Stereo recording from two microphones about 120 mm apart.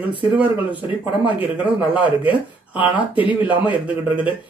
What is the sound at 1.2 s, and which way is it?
Speech, 15° right (ahead or behind).